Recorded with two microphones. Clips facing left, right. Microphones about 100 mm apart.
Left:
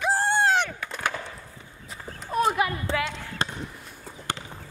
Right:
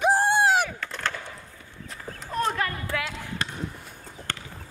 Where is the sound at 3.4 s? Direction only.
30° left (ahead or behind).